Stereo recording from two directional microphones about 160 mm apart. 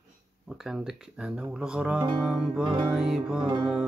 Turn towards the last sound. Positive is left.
turn(degrees=-30)  # may be behind; listen again after turning